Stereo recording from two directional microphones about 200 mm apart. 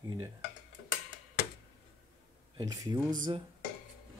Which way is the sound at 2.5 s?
20° right (ahead or behind).